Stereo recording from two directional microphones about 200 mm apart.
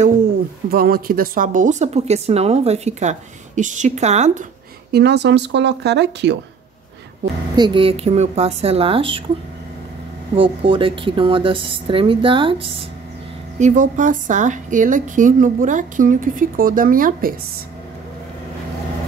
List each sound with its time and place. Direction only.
0.7 s a woman's voice: 50° right (ahead or behind)
4.9 s speech: 55° right (ahead or behind)
7.2 s a woman's voice: 40° right (ahead or behind)
7.5 s a woman's voice: 25° right (ahead or behind)
10.3 s a woman's voice: 25° right (ahead or behind)
13.6 s a woman's voice: 35° right (ahead or behind)